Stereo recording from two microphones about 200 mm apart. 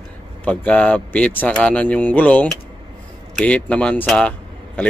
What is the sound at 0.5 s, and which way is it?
Speech, 5° left (ahead or behind).